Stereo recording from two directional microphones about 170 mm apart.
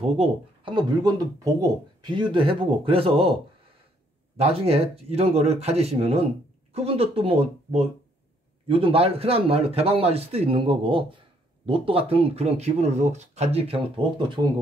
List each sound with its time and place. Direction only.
0.0 s speech: 30° right (ahead or behind)
4.4 s a man's voice: 35° right (ahead or behind)